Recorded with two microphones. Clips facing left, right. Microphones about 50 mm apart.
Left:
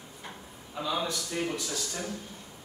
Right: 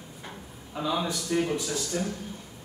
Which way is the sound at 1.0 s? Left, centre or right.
Right.